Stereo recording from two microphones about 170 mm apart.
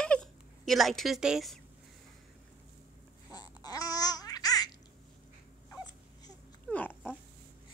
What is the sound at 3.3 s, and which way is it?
Babbling, 25° left (ahead or behind).